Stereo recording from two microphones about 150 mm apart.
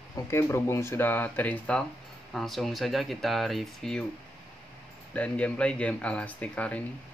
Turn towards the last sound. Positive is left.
turn(degrees=10)  # may be behind; listen again after turning